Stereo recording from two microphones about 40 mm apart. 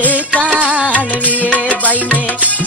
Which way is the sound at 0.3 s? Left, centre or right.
Right.